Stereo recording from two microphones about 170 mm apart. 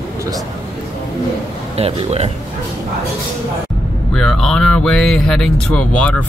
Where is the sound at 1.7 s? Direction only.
35° right (ahead or behind).